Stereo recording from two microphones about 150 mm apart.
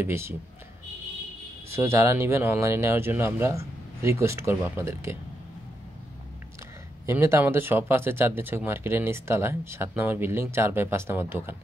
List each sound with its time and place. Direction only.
0.0 s speech: 15° right (ahead or behind)
1.7 s speech: 15° right (ahead or behind)
7.1 s speech: 15° right (ahead or behind)